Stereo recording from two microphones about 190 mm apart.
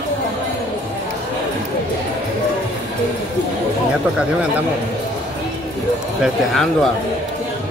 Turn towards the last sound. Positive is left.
turn(degrees=0)  # may be behind; listen again after turning